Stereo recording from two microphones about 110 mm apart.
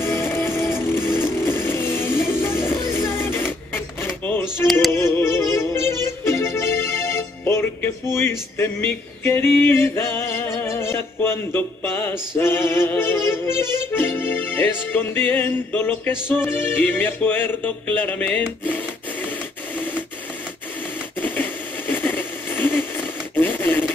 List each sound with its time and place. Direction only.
0.0 s music: 20° left (ahead or behind)
0.6 s music: 5° right (ahead or behind)
1.2 s music: 20° left (ahead or behind)
3.7 s a sound: 20° left (ahead or behind)
4.9 s music: 20° left (ahead or behind)
21.2 s a sound: 15° left (ahead or behind)